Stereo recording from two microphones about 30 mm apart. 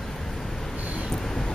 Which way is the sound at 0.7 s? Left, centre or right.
Right.